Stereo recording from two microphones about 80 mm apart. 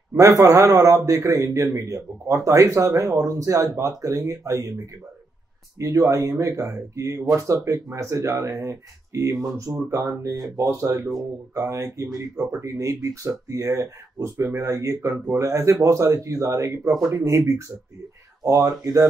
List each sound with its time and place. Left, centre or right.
0.1 s a man's voice: right
5.8 s a man's voice: right